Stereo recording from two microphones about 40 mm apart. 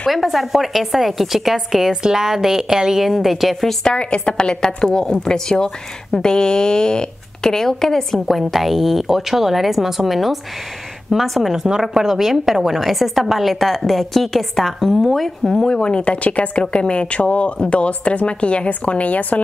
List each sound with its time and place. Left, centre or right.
0.1 s a woman's voice: centre
1.9 s a woman's voice: centre
3.8 s a woman's voice: left; by 8.2 s centre
8.3 s a woman's voice: centre
11.9 s a woman's voice: centre; by 16.6 s left
16.6 s a woman's voice: left